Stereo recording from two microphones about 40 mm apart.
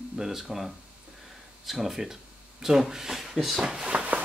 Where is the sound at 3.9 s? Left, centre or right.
Right.